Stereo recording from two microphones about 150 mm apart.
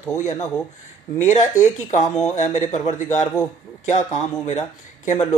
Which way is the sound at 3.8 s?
50° left (ahead or behind).